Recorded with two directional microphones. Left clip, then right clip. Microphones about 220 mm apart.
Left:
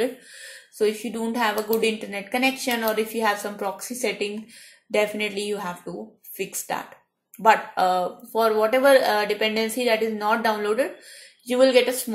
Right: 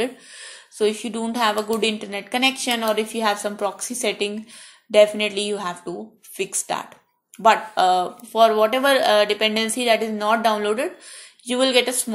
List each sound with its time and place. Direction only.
0.0 s speech: 25° right (ahead or behind)
1.7 s a woman's voice: centre (ahead or behind)
2.0 s speech: 30° right (ahead or behind)